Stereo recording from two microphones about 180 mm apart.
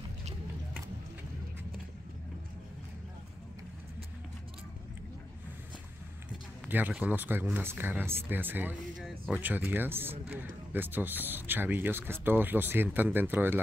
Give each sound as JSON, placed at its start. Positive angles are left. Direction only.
{"t": 6.6, "sound": "speech", "side_deg": -10}